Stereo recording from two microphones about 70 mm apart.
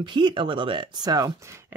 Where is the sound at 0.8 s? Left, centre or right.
Right.